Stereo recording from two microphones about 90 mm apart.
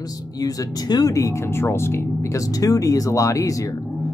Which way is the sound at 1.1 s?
35° left (ahead or behind).